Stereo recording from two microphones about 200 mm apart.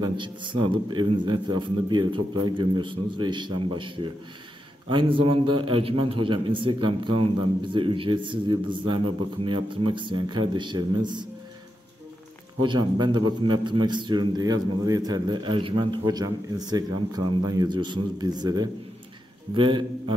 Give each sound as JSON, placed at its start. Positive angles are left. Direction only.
{"t": 0.0, "sound": "a man's voice", "side_deg": -25}
{"t": 12.6, "sound": "a man's voice", "side_deg": -20}